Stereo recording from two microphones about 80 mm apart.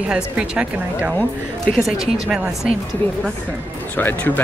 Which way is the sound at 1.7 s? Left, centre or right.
Centre.